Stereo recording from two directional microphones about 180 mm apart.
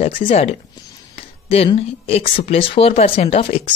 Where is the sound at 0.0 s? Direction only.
35° left (ahead or behind).